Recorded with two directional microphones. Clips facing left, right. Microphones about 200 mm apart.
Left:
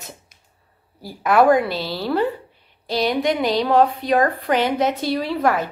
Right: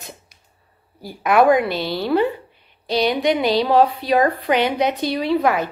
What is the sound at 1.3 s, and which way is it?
Speech, centre (ahead or behind).